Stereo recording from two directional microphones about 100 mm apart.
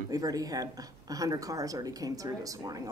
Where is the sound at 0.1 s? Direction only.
40° right (ahead or behind).